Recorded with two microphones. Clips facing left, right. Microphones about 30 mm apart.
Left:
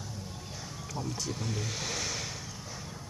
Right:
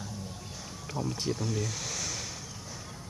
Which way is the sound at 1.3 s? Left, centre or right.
Centre.